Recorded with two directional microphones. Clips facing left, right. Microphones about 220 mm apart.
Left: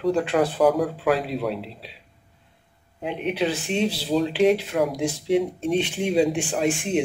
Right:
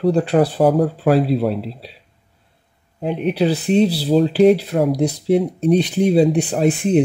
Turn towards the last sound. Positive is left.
turn(degrees=-35)  # may be behind; listen again after turning